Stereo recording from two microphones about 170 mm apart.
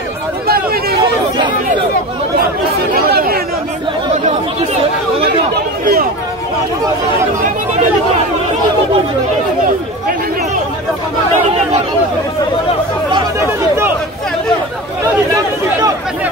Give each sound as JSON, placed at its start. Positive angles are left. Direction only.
{"t": 0.5, "sound": "a sound", "side_deg": -60}
{"t": 3.1, "sound": "chatter", "side_deg": -60}
{"t": 5.5, "sound": "chatter", "side_deg": -60}